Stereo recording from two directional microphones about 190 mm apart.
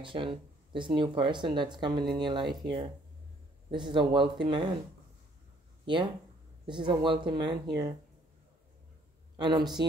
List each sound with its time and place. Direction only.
0.0 s speech: 25° right (ahead or behind)
6.7 s speech: 25° right (ahead or behind)
9.4 s speech: 20° right (ahead or behind)